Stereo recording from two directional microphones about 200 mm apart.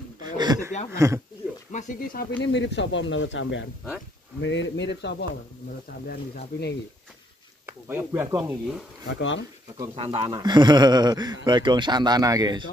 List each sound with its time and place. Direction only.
0.2 s a sound: 20° right (ahead or behind)
0.9 s speech: 15° right (ahead or behind)
1.7 s speech: 40° left (ahead or behind); by 5.1 s 60° left (ahead or behind)
6.0 s speech: 50° left (ahead or behind)
7.9 s speech: 10° right (ahead or behind)
9.0 s speech: 70° left (ahead or behind)
9.9 s speech: 30° right (ahead or behind)